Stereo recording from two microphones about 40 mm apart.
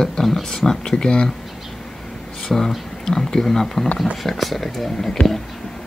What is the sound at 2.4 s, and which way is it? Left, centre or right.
Speech, centre.